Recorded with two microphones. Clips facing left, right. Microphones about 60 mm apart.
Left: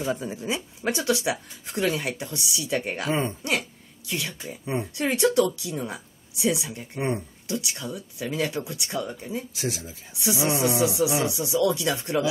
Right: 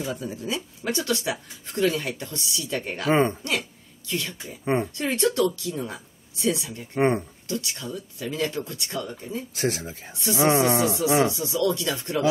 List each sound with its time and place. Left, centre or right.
0.0 s speech: left
3.1 s speech: right
4.1 s speech: centre
9.6 s speech: right
11.3 s speech: centre